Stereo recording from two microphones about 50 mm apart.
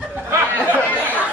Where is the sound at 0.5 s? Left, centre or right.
Right.